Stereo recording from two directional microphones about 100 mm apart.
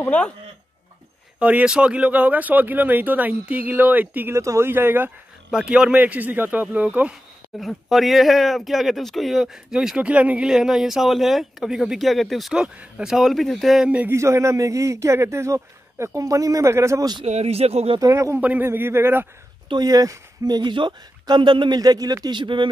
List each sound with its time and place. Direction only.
1.4 s speech: 15° right (ahead or behind)
4.4 s a man's voice: 30° right (ahead or behind)
5.5 s speech: 10° right (ahead or behind)
7.6 s speech: centre (ahead or behind)
13.8 s speech: 15° right (ahead or behind)
14.1 s a man's voice: 30° right (ahead or behind)
17.2 s a man's voice: 90° right
18.0 s a man's voice: 30° right (ahead or behind)
18.4 s a man's voice: 20° right (ahead or behind)
19.7 s a woman's voice: 40° right (ahead or behind)